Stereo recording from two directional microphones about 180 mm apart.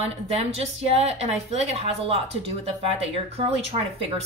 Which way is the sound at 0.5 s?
35° right (ahead or behind).